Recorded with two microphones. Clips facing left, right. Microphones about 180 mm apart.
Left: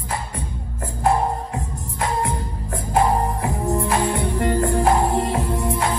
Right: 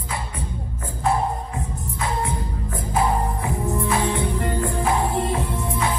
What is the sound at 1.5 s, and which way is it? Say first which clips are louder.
Music: left 1 dB; 35° left (ahead or behind).